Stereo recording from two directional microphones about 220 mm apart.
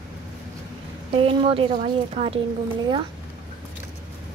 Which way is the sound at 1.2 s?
25° right (ahead or behind).